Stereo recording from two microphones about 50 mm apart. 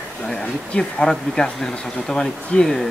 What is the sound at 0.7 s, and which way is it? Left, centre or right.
Speech, centre.